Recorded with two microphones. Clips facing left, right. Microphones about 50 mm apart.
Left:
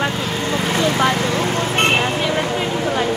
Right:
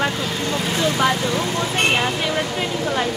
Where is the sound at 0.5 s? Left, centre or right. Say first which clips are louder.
Left 3 dB; left.